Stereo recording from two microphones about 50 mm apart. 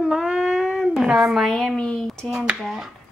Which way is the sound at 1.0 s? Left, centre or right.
Right.